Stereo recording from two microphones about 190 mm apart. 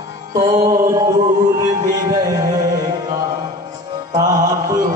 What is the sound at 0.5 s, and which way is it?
Music, 15° right (ahead or behind).